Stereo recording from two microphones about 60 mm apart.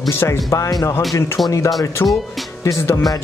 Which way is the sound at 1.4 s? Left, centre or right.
Left.